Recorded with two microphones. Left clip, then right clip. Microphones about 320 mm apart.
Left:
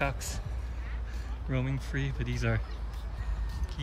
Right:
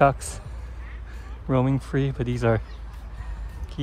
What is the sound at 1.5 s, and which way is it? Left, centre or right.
Speech, centre.